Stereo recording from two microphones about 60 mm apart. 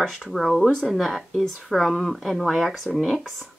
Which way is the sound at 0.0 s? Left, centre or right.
Centre.